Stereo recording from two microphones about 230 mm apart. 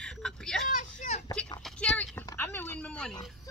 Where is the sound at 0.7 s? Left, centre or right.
Left.